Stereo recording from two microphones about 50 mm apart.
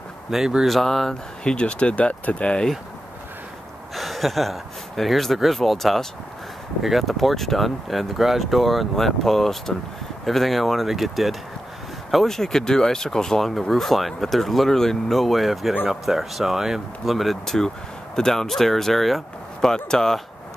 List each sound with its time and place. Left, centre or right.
0.3 s speech: centre
1.4 s speech: centre
3.9 s speech: centre